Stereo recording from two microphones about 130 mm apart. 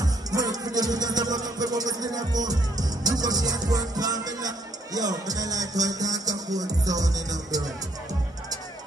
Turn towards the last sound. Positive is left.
turn(degrees=-30)  # may be behind; listen again after turning